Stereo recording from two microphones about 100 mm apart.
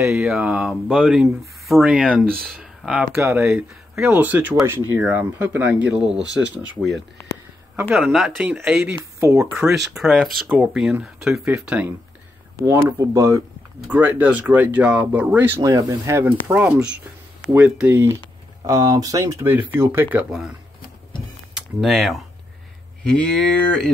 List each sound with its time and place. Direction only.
0.1 s speech: 5° right (ahead or behind)
3.2 s speech: 25° right (ahead or behind); by 6.4 s 5° right (ahead or behind)
7.9 s speech: 5° right (ahead or behind)
8.4 s speech: 15° right (ahead or behind)
9.7 s speech: centre (ahead or behind)
12.5 s speech: 35° right (ahead or behind)
13.8 s speech: 15° right (ahead or behind)
15.6 s speech: 30° right (ahead or behind)
18.6 s speech: 40° right (ahead or behind)
19.4 s speech: 20° right (ahead or behind)
20.2 s speech: 5° right (ahead or behind)
21.5 s speech: centre (ahead or behind)